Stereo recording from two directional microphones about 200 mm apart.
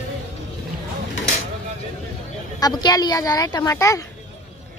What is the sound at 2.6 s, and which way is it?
Speech, 20° left (ahead or behind).